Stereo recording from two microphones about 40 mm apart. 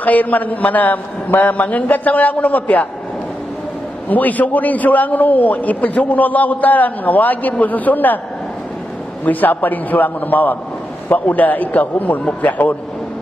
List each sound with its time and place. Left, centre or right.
0.0 s a man's voice: left
4.1 s a man's voice: left
9.2 s a man's voice: left